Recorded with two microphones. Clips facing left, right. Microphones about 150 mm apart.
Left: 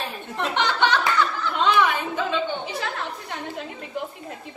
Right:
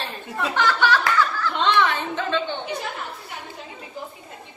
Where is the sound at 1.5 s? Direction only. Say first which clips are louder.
Left 2 dB; 5° left (ahead or behind).